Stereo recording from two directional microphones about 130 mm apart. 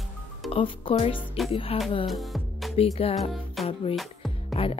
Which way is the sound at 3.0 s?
50° left (ahead or behind).